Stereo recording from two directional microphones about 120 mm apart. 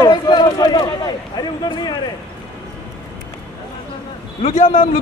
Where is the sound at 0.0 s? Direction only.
35° left (ahead or behind).